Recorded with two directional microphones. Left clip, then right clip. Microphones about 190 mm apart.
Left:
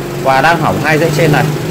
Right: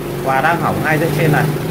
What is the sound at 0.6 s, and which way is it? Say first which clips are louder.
Speech: left 5 dB; 35° left (ahead or behind).